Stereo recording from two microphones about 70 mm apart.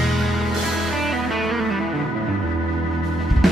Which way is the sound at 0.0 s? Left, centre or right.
Centre.